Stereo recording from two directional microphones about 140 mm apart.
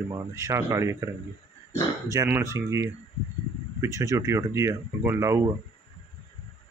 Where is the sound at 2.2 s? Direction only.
20° right (ahead or behind).